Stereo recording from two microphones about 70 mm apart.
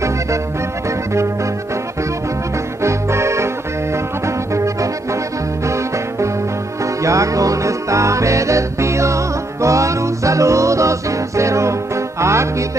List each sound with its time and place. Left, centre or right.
0.8 s music: right
2.8 s music: right
5.7 s music: right